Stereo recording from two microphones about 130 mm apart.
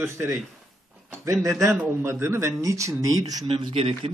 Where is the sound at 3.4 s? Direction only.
45° right (ahead or behind).